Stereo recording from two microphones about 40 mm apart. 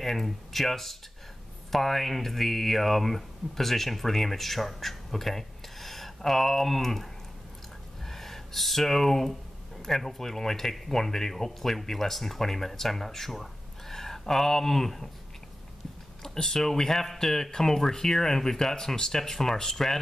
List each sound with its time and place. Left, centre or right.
0.0 s speech: centre
16.2 s speech: centre